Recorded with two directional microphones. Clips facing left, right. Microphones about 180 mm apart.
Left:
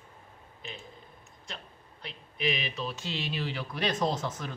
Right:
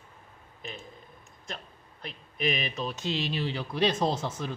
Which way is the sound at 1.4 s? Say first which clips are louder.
Right 4 dB; 45° right (ahead or behind).